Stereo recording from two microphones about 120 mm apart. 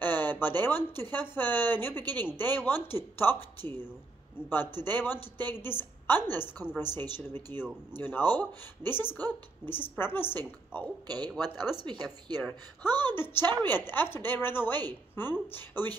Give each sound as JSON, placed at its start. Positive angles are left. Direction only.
{"t": 0.0, "sound": "a sound", "side_deg": 15}
{"t": 1.1, "sound": "a woman's voice", "side_deg": 15}
{"t": 11.1, "sound": "speech", "side_deg": -35}
{"t": 13.0, "sound": "a woman's voice", "side_deg": 20}